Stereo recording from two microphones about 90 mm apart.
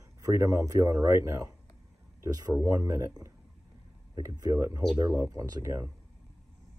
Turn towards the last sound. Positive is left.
turn(degrees=-35)  # may be behind; listen again after turning